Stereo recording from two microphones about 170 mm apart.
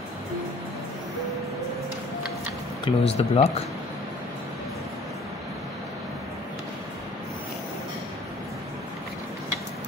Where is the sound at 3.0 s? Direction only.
35° left (ahead or behind).